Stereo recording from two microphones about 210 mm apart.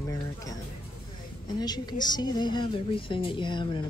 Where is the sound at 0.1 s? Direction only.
15° left (ahead or behind).